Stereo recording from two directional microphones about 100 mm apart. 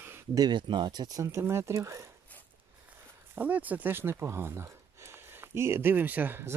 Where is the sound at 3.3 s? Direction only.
15° right (ahead or behind).